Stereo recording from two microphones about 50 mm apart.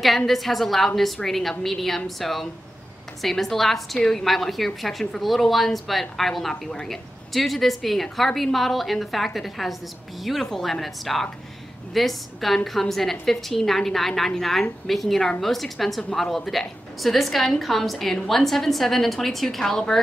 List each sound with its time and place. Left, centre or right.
0.3 s a woman's voice: centre